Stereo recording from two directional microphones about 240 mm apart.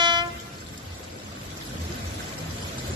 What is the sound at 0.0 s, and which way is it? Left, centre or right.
Vehicle, centre.